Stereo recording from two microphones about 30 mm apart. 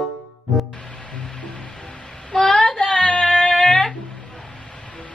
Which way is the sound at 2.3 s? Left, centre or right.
Centre.